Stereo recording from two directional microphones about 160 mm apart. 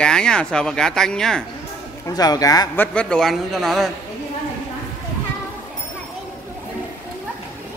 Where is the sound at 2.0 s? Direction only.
25° left (ahead or behind).